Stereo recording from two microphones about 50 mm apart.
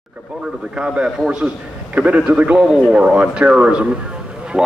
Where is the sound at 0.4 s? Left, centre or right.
Centre.